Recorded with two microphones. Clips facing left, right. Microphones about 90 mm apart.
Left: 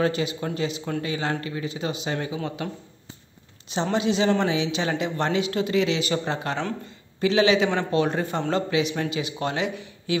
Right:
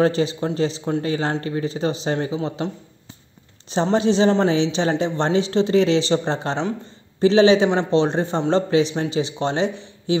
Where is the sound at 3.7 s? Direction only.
35° right (ahead or behind).